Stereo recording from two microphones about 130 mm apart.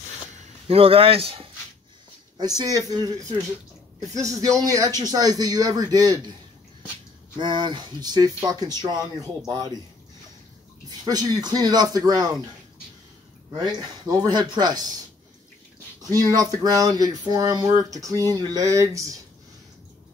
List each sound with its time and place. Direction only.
0.7 s a man's voice: 45° right (ahead or behind)
2.3 s speech: 30° right (ahead or behind)
7.3 s speech: 35° right (ahead or behind)
10.9 s speech: 30° right (ahead or behind)
13.7 s speech: 35° right (ahead or behind)
16.0 s speech: 30° right (ahead or behind)